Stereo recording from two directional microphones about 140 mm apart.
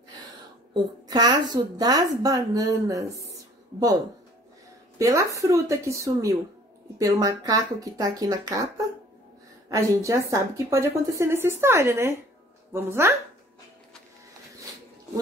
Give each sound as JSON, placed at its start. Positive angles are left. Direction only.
{"t": 1.0, "sound": "a woman's voice", "side_deg": -25}
{"t": 4.9, "sound": "a woman's voice", "side_deg": -20}